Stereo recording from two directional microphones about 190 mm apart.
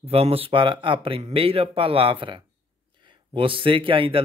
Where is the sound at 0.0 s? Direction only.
30° right (ahead or behind).